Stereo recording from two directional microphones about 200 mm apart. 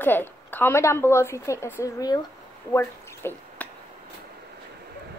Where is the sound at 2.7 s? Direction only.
15° left (ahead or behind).